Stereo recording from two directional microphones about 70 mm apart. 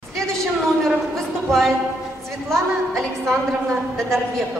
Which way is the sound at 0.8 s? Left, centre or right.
Centre.